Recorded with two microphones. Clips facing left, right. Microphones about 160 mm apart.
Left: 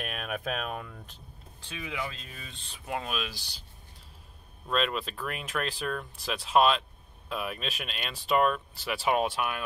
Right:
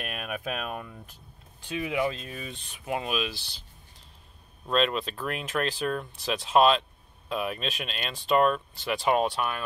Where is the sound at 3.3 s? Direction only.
10° left (ahead or behind).